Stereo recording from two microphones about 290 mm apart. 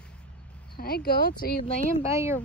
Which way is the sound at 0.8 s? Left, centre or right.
Left.